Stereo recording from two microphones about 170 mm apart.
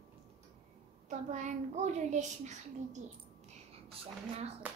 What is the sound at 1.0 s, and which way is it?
A child's voice, 45° right (ahead or behind).